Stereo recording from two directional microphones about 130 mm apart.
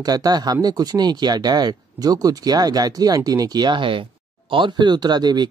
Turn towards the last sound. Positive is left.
turn(degrees=-35)  # may be behind; listen again after turning